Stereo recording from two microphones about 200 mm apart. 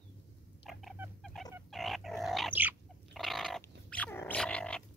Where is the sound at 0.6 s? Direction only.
Centre (ahead or behind).